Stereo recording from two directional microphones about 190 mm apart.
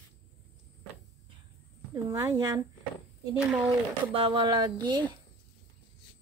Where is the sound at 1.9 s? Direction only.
15° right (ahead or behind).